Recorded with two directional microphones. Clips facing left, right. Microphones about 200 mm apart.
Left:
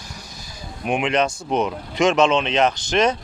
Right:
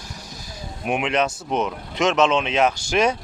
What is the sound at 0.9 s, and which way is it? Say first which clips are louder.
Speech: left 1 dB; 5° right (ahead or behind).